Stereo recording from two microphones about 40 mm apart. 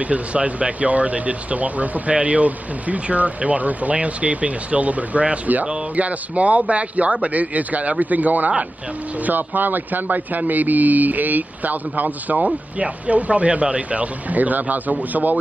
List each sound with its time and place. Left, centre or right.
0.0 s speech: right